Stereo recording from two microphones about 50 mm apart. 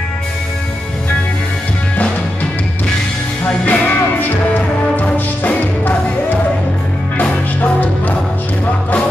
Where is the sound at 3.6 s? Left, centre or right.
Left.